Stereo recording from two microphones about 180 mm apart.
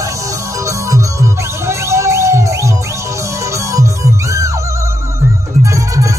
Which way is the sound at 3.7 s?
15° right (ahead or behind).